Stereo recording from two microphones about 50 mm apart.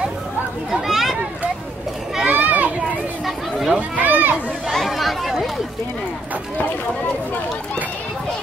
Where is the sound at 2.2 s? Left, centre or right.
Right.